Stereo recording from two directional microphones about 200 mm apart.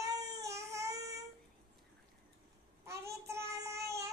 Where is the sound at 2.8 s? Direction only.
15° right (ahead or behind).